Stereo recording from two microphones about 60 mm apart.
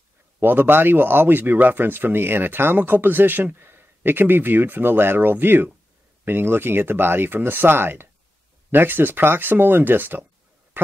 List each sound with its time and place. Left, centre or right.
0.4 s speech: right